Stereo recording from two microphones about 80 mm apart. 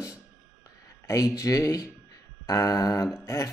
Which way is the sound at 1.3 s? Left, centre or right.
Left.